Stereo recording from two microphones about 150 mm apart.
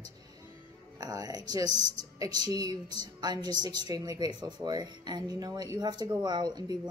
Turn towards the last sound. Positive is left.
turn(degrees=-30)  # may be behind; listen again after turning